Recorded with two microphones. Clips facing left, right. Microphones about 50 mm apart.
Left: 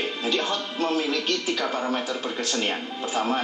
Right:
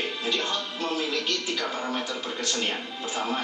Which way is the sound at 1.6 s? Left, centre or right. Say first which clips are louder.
Left 4 dB; centre.